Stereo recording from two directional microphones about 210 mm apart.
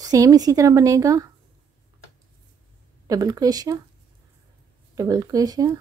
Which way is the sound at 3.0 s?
15° right (ahead or behind).